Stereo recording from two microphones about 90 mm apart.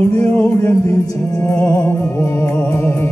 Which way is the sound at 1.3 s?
40° left (ahead or behind).